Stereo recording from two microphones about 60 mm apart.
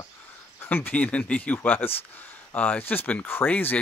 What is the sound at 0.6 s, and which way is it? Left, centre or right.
Speech, left.